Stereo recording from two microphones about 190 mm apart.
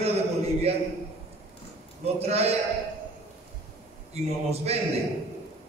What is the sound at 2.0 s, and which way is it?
Speech, 35° right (ahead or behind).